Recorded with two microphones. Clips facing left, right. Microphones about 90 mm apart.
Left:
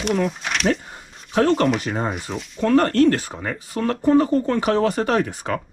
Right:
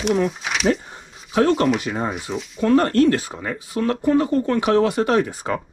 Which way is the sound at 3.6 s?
40° left (ahead or behind).